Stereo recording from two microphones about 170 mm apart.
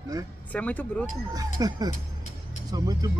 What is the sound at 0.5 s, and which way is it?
Speech, 10° left (ahead or behind).